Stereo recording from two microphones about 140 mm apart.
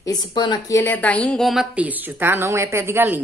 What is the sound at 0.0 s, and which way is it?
A woman's voice, 30° left (ahead or behind).